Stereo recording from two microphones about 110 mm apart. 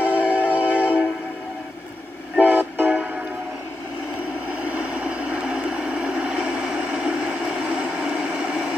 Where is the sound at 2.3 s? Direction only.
15° right (ahead or behind).